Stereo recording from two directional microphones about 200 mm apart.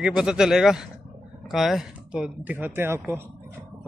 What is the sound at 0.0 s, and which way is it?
Speech, 5° right (ahead or behind).